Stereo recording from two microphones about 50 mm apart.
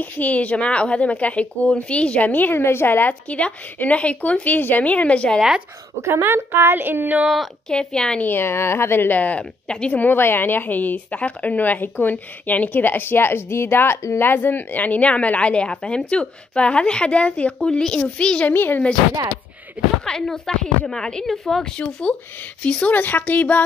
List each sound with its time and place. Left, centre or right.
0.0 s a woman's voice: left
2.5 s a woman's voice: left
3.1 s a woman's voice: left
4.8 s a woman's voice: left
5.9 s a woman's voice: right
7.7 s speech: centre
8.2 s a woman's voice: left
9.4 s speech: centre
9.9 s a woman's voice: left
14.1 s a woman's voice: left
18.5 s a woman's voice: left
20.1 s speech: centre
21.7 s a woman's voice: left
22.9 s a woman's voice: left